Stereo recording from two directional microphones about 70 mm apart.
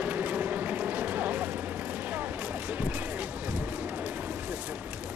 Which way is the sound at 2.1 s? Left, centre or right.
Right.